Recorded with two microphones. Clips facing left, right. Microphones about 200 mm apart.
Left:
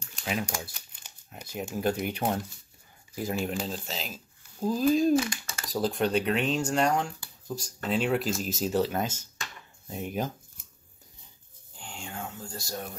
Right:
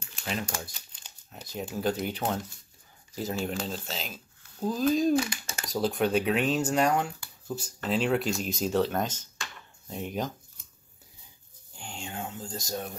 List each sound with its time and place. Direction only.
0.2 s speech: 10° left (ahead or behind)
3.4 s speech: centre (ahead or behind)
11.8 s a sound: 25° right (ahead or behind)